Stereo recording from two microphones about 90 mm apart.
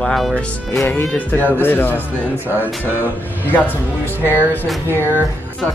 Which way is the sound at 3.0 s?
20° left (ahead or behind).